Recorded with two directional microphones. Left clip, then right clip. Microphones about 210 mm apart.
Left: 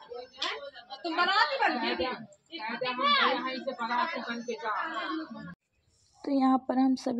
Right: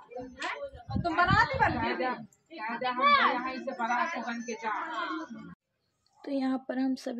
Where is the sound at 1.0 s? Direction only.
15° left (ahead or behind).